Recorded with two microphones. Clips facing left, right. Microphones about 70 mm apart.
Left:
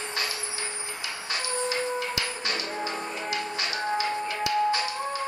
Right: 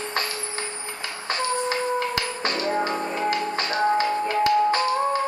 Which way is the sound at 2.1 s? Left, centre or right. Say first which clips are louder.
Right 4 dB; right.